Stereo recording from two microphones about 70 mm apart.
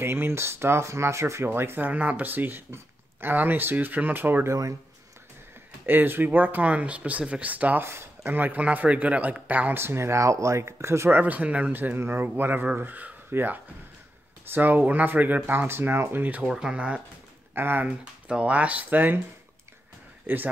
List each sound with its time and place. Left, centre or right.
0.0 s speech: right
4.5 s speech: right
5.9 s speech: right
7.8 s speech: right
11.1 s speech: right
16.4 s speech: centre
17.6 s speech: right
17.8 s speech: centre
20.3 s speech: right